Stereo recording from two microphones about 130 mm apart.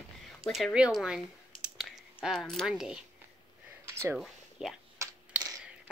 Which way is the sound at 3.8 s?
20° right (ahead or behind).